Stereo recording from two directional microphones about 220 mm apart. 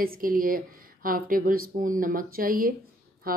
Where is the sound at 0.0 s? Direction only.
40° right (ahead or behind).